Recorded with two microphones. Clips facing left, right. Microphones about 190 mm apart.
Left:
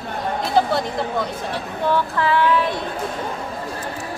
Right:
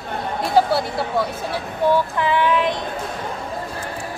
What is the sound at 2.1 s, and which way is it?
Speech, 15° right (ahead or behind).